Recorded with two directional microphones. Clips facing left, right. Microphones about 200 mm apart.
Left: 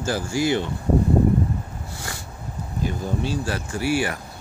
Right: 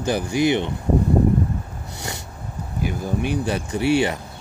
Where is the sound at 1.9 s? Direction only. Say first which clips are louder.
Right 4 dB; 20° right (ahead or behind).